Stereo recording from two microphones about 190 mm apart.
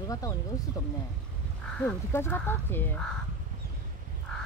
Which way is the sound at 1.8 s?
10° left (ahead or behind).